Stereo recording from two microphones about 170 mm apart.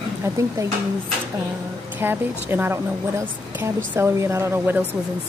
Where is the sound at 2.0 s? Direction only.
10° right (ahead or behind).